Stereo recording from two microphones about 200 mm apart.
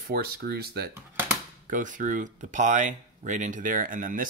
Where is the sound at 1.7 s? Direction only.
40° right (ahead or behind).